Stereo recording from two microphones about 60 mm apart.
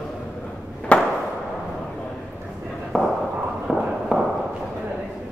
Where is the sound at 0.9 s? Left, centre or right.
Left.